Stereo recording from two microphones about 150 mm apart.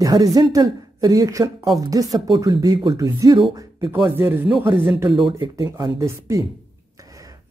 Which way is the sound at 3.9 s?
15° right (ahead or behind).